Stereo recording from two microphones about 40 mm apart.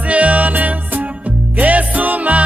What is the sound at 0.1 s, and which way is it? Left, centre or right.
Music, right.